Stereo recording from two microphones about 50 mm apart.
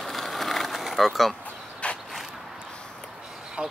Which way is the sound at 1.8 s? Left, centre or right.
Left.